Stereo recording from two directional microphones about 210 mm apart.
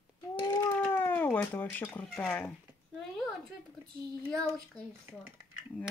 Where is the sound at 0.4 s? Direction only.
15° left (ahead or behind).